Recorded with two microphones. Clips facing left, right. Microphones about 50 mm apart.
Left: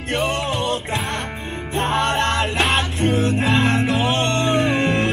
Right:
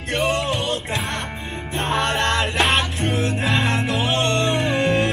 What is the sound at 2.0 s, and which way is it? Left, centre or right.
Music, left.